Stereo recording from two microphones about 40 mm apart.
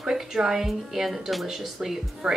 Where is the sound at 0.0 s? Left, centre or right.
Centre.